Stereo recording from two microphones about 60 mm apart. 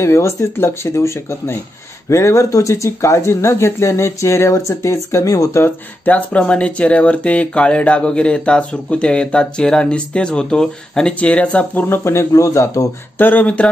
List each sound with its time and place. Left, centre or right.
0.0 s speech: left
6.0 s speech: left
12.0 s speech: left
12.3 s speech: left
13.2 s speech: left